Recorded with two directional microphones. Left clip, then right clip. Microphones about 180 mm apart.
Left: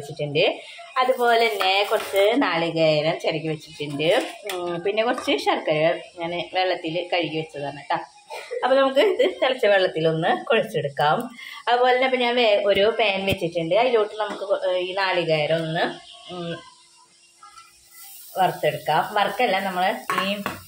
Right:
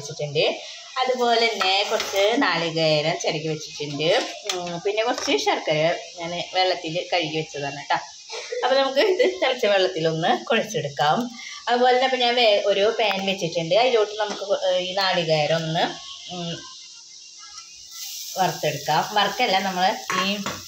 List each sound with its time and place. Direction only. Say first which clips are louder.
0.9 s stir: left 2 dB; 10° left (ahead or behind)
8.5 s speech: left 1 dB; centre (ahead or behind)
18.3 s speech: left 2 dB; 5° right (ahead or behind)